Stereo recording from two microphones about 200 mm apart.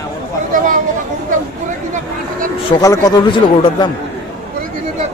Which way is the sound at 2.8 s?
20° left (ahead or behind).